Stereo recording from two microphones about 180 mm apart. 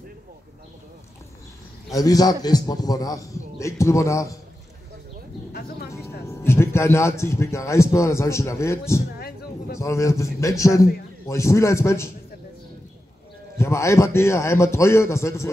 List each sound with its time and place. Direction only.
1.9 s a man's voice: 20° left (ahead or behind)
5.5 s speech: 55° left (ahead or behind)
5.9 s music: 15° left (ahead or behind)
6.2 s a man's voice: 15° left (ahead or behind)
13.6 s a man's voice: 15° left (ahead or behind)